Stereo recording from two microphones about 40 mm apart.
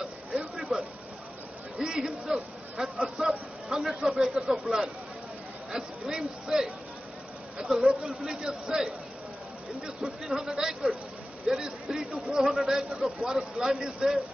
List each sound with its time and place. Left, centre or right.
0.4 s a sound: centre
1.8 s a man's voice: centre
2.3 s a man's voice: centre
4.7 s a man's voice: right
10.3 s a man's voice: centre
12.4 s a man's voice: centre